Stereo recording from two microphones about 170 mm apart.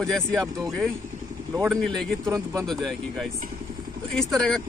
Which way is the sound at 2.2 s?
20° right (ahead or behind).